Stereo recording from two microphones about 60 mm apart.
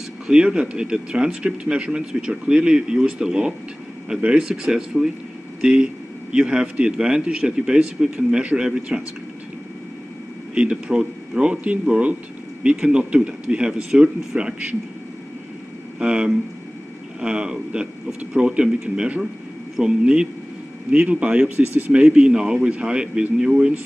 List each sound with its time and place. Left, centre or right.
0.3 s speech: centre
10.5 s speech: centre
16.0 s speech: centre
21.5 s speech: right
21.9 s speech: centre